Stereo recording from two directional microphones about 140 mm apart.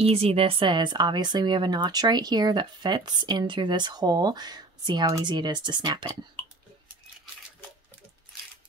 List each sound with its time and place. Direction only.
0.0 s speech: 45° right (ahead or behind)